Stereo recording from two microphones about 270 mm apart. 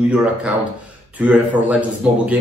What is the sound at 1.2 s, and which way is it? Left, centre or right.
A man's voice, centre.